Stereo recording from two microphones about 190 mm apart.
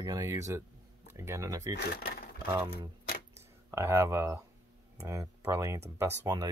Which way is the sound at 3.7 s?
15° right (ahead or behind).